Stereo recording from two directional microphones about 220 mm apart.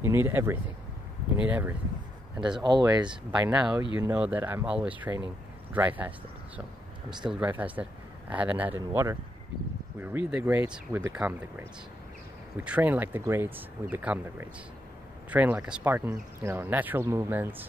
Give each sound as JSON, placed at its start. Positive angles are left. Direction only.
{"t": 0.0, "sound": "speech", "side_deg": -10}
{"t": 2.6, "sound": "speech", "side_deg": -20}
{"t": 3.3, "sound": "speech", "side_deg": -5}